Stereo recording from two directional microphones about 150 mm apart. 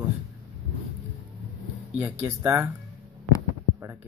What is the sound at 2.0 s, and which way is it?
Speech, 20° right (ahead or behind).